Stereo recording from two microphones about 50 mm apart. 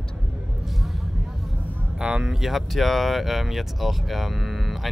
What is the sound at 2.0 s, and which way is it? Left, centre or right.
Speech, centre.